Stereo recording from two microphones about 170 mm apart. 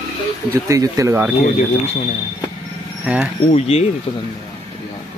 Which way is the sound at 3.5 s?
35° left (ahead or behind).